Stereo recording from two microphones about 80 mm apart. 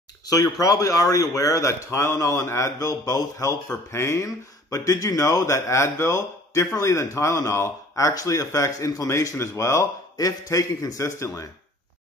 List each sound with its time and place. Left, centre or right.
0.3 s speech: left
3.9 s speech: left